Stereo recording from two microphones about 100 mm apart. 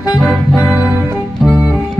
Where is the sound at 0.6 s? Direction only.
15° right (ahead or behind).